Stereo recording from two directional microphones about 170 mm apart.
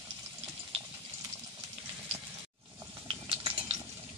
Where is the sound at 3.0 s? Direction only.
30° right (ahead or behind).